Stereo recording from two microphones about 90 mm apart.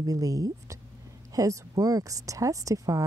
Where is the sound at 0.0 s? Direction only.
40° right (ahead or behind).